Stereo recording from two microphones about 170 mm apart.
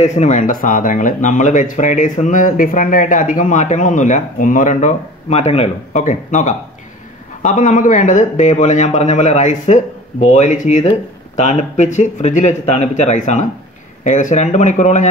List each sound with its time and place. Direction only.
0.0 s speech: 45° left (ahead or behind)